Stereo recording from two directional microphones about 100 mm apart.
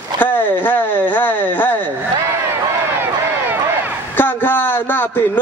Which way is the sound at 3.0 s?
20° right (ahead or behind).